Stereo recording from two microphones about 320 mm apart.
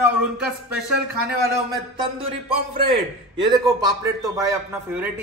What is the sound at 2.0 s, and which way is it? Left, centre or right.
A man's voice, centre.